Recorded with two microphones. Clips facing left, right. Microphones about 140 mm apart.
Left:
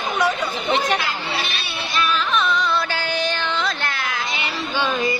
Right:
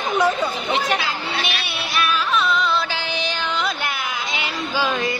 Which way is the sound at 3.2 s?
10° right (ahead or behind).